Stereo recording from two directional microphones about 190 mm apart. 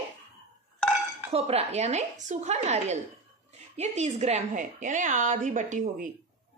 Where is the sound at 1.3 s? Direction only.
30° right (ahead or behind).